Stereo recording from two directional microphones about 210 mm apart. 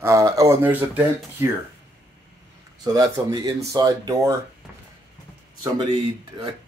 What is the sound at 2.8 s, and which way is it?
Speech, 20° right (ahead or behind).